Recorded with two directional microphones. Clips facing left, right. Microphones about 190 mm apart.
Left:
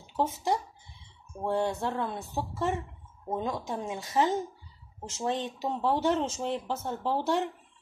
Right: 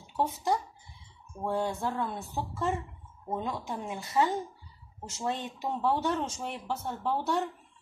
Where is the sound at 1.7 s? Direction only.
20° left (ahead or behind).